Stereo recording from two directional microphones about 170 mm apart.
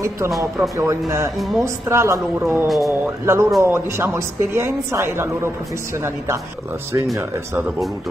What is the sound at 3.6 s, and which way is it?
A woman's voice, 15° right (ahead or behind).